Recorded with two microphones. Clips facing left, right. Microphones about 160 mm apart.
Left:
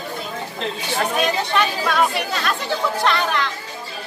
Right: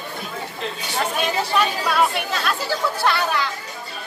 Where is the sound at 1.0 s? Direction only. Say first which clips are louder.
Left 2 dB; 5° right (ahead or behind).